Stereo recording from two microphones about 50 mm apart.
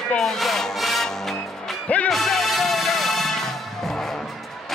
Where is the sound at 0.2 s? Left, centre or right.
Centre.